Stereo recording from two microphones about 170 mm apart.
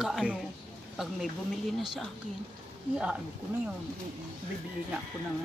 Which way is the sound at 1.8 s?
Centre (ahead or behind).